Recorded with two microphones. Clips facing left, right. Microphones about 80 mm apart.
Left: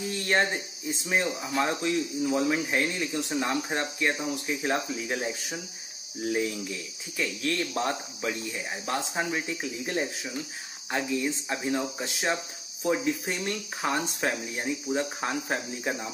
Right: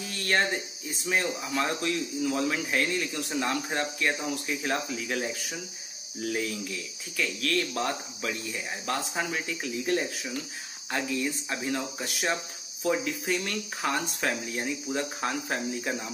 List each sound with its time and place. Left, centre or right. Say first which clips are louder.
0.1 s cricket: left 1 dB; centre
1.0 s speech: even; centre
14.9 s speech: left 3 dB; centre